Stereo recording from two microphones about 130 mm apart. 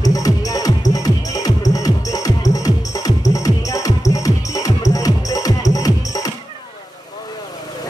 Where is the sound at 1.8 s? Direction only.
25° left (ahead or behind).